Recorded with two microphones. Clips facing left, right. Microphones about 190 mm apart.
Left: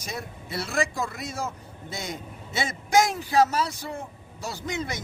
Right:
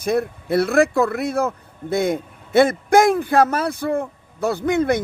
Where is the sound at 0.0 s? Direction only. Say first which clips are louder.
Right 15 dB; 55° right (ahead or behind).